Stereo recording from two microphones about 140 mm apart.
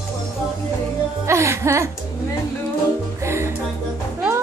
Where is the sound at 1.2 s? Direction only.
20° right (ahead or behind).